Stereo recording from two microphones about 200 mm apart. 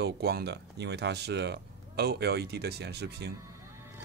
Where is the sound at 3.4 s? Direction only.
15° right (ahead or behind).